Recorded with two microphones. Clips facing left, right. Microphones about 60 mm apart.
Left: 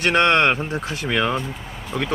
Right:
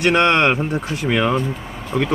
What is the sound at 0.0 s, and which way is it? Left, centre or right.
Speech, centre.